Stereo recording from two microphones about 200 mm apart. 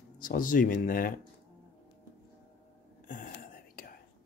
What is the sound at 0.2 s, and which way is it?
Speech, 45° left (ahead or behind).